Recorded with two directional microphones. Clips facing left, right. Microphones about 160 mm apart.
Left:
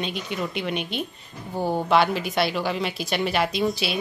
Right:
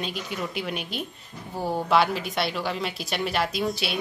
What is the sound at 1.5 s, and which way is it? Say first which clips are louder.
Speech: left 3 dB; 25° left (ahead or behind).